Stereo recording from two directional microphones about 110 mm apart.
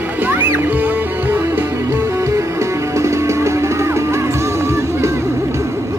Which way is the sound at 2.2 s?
25° right (ahead or behind).